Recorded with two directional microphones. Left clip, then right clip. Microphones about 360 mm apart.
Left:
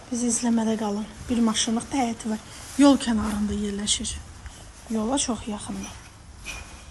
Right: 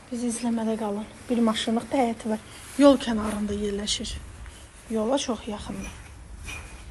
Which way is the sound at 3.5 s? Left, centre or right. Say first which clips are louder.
Right 2 dB; right.